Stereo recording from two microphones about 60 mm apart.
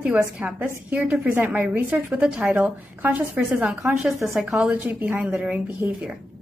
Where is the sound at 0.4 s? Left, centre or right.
Centre.